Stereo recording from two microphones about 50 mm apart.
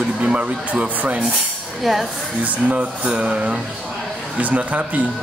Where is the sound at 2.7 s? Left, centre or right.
Right.